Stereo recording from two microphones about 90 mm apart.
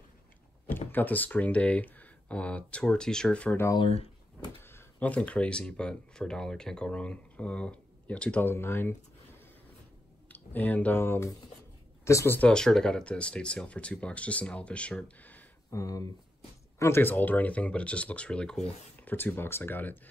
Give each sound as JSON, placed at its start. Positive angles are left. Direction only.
{"t": 0.7, "sound": "speech", "side_deg": 20}
{"t": 4.6, "sound": "a sound", "side_deg": 25}
{"t": 5.0, "sound": "speech", "side_deg": 15}
{"t": 10.2, "sound": "speech", "side_deg": 20}
{"t": 12.4, "sound": "speech", "side_deg": 10}
{"t": 15.7, "sound": "speech", "side_deg": 40}
{"t": 19.0, "sound": "speech", "side_deg": 20}